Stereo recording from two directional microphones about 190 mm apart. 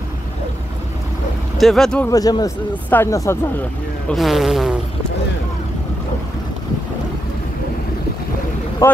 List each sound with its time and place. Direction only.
1.6 s insect: centre (ahead or behind)
2.0 s speech: 20° left (ahead or behind)
4.1 s insect: centre (ahead or behind)
8.8 s speech: 15° left (ahead or behind)